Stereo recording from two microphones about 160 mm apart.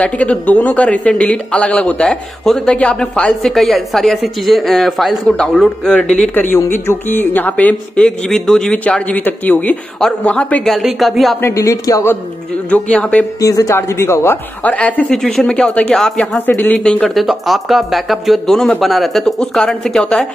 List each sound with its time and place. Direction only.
0.0 s speech: 10° left (ahead or behind)
11.4 s speech: 20° left (ahead or behind)
12.9 s speech: 5° left (ahead or behind)
13.4 s speech: 20° left (ahead or behind); by 20.2 s 5° left (ahead or behind)